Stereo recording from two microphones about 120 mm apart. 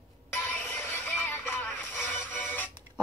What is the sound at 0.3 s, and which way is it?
Music, 15° left (ahead or behind).